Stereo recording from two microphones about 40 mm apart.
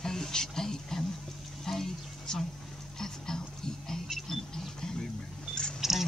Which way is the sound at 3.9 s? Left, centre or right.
Centre.